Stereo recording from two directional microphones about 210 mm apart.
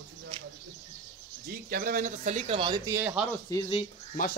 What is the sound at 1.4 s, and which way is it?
Speech, 45° right (ahead or behind).